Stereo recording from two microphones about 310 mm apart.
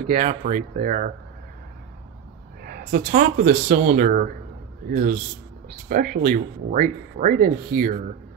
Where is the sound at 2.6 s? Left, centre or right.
Right.